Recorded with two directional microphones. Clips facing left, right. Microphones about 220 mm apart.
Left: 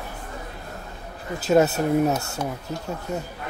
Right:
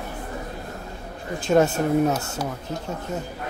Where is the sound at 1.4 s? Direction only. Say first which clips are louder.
Even; 5° left (ahead or behind).